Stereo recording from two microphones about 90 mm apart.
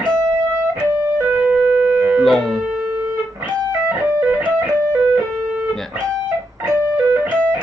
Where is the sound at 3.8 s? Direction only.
20° right (ahead or behind).